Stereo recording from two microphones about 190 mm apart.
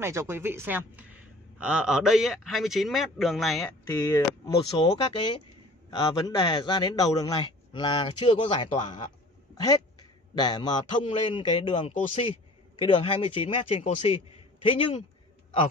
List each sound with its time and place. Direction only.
0.0 s speech: 15° right (ahead or behind)
3.8 s a man's voice: 15° left (ahead or behind)